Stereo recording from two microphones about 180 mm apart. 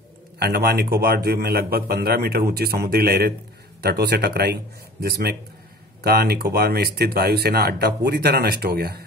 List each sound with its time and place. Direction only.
0.4 s speech: 60° right (ahead or behind)